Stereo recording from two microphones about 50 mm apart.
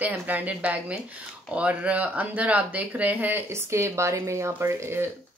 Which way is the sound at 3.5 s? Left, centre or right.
Right.